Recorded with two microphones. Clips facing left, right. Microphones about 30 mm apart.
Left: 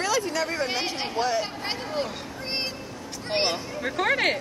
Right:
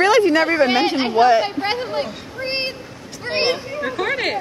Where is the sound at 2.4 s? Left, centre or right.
Right.